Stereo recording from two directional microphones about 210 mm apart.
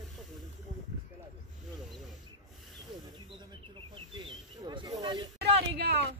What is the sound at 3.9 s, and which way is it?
Speech, 25° right (ahead or behind).